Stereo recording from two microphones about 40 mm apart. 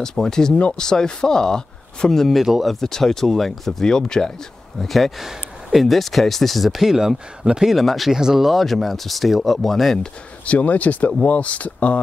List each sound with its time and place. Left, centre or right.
0.0 s speech: centre
2.6 s speech: centre
4.7 s speech: centre
7.7 s speech: centre
8.1 s speech: centre
8.5 s speech: centre
10.4 s speech: left